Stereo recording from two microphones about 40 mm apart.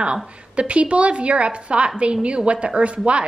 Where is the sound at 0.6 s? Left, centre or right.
Right.